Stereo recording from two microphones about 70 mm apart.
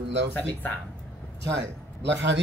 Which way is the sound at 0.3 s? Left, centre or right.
Left.